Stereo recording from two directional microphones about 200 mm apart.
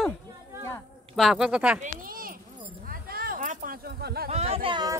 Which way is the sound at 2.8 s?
45° right (ahead or behind).